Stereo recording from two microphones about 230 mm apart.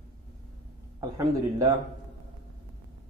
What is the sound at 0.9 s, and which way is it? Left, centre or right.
Speech, centre.